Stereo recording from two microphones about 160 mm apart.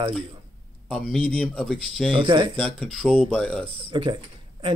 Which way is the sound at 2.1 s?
35° right (ahead or behind).